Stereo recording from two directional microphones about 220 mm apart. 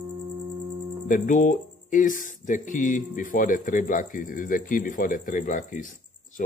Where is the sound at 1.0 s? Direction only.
35° left (ahead or behind).